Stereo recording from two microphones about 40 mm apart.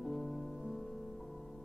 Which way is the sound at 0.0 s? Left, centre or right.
Centre.